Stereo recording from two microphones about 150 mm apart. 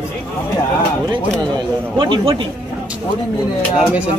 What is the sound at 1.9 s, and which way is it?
Speech, 30° right (ahead or behind).